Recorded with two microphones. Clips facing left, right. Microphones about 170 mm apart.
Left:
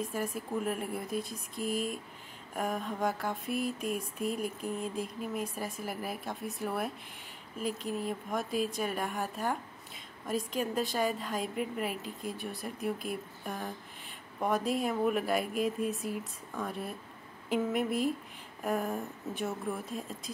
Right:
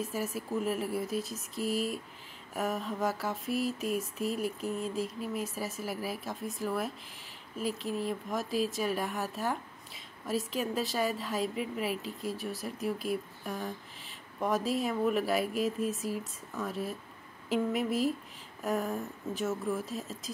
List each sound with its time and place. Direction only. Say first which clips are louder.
0.1 s speech: right 1 dB; 5° right (ahead or behind)
1.6 s speech: right 2 dB; 50° left (ahead or behind)
2.5 s speech: right 1 dB; centre (ahead or behind)